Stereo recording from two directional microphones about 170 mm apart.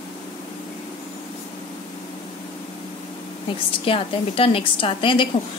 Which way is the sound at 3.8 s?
30° left (ahead or behind).